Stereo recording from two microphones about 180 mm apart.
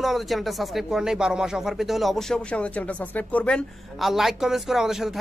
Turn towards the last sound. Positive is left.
turn(degrees=0)  # may be behind; listen again after turning